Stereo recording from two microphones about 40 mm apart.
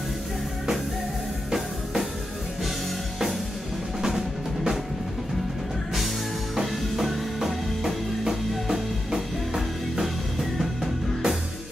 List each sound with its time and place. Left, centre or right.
6.5 s music: centre